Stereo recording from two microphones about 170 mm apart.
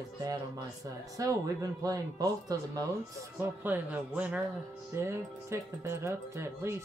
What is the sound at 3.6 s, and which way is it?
Speech, 10° right (ahead or behind).